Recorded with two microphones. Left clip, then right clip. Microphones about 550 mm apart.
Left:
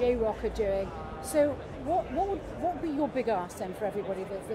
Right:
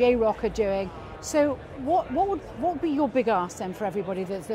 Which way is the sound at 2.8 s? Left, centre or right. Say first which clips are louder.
Right 6 dB; right.